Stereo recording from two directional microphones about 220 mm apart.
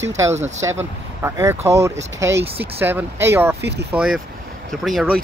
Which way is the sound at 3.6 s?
50° right (ahead or behind).